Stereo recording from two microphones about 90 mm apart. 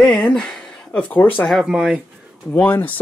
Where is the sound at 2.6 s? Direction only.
20° left (ahead or behind).